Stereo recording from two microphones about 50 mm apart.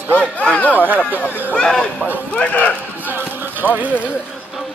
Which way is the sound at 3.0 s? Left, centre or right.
Right.